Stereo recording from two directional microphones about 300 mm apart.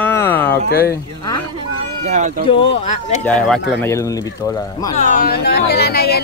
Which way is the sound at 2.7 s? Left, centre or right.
Left.